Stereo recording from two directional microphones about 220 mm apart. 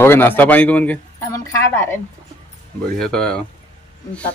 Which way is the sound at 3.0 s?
5° left (ahead or behind).